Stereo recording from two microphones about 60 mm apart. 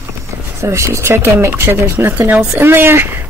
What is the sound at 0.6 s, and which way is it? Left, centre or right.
Speech, right.